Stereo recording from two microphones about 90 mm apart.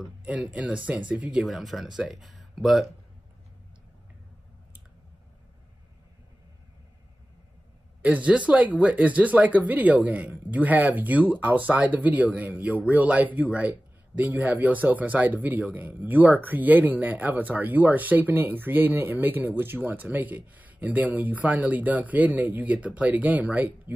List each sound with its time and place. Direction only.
0.2 s speech: 15° right (ahead or behind)
8.0 s speech: 15° right (ahead or behind)